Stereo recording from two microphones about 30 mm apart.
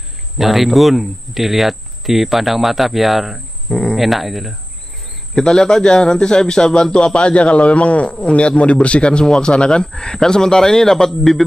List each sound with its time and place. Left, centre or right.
0.4 s speech: centre
3.6 s cricket: centre
3.9 s speech: centre
5.3 s speech: centre
7.2 s a man's voice: left; by 11.4 s centre